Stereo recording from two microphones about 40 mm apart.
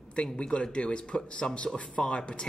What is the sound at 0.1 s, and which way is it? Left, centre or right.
Speech, left.